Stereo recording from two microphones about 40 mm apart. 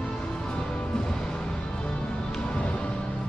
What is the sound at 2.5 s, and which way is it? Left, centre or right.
Music, left.